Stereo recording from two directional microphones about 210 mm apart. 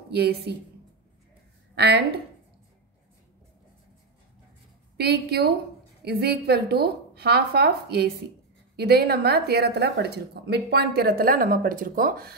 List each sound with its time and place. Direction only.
0.1 s a woman's voice: 50° right (ahead or behind)
1.8 s a woman's voice: 50° right (ahead or behind)
4.9 s a woman's voice: 50° right (ahead or behind)